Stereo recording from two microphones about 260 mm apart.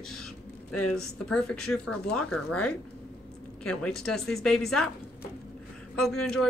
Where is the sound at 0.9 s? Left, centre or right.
Centre.